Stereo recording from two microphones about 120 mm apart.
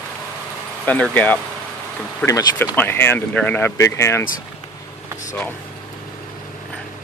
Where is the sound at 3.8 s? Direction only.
25° left (ahead or behind).